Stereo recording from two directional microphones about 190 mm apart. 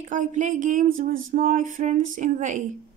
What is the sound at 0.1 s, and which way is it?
Speech, 40° right (ahead or behind).